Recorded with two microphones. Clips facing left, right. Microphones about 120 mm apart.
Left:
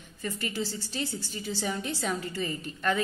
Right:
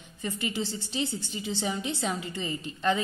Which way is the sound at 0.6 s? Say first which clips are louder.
Left 1 dB; 30° right (ahead or behind).